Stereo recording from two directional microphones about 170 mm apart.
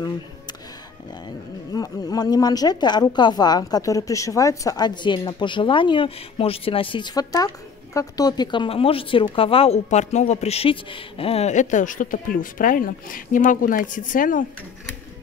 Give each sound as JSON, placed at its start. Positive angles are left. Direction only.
{"t": 1.7, "sound": "speech", "side_deg": 20}